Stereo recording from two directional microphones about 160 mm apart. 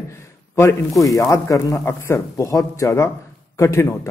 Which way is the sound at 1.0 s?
20° left (ahead or behind).